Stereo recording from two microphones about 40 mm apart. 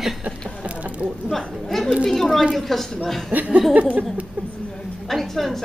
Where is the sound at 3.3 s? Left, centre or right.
Right.